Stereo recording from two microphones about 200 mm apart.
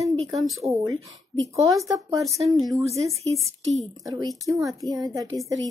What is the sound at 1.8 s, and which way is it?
Speech, 15° right (ahead or behind).